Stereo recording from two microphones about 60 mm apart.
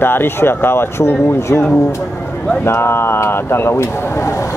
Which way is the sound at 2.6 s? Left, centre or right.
Left.